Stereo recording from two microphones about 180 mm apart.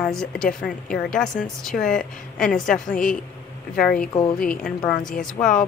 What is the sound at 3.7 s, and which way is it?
Speech, 50° left (ahead or behind).